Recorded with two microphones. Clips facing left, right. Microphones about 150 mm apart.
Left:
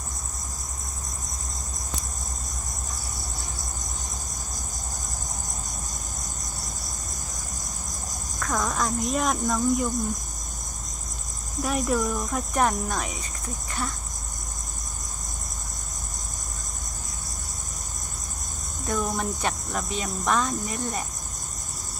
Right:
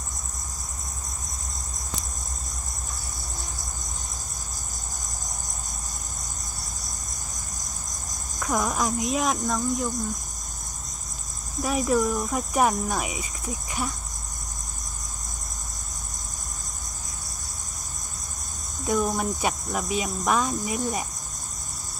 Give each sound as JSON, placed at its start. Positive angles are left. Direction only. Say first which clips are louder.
{"t": 8.4, "sound": "speech", "louder": "right 2 dB", "side_deg": -15}
{"t": 11.6, "sound": "speech", "louder": "right 2 dB", "side_deg": 0}
{"t": 18.9, "sound": "cricket", "louder": "right 3 dB", "side_deg": -5}